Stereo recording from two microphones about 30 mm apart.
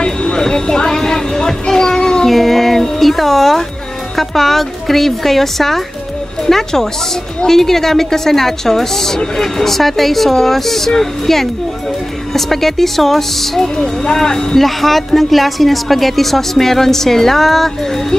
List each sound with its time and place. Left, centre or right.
0.0 s a sound: left
2.2 s a woman's voice: centre
14.6 s a woman's voice: centre